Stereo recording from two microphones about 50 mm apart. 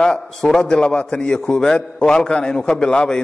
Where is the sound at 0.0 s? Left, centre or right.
Centre.